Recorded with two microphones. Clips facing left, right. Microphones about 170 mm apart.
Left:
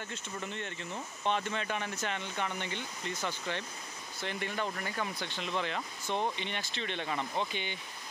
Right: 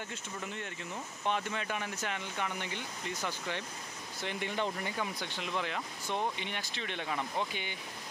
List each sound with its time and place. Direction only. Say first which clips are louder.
0.1 s speech: left 1 dB; 5° right (ahead or behind)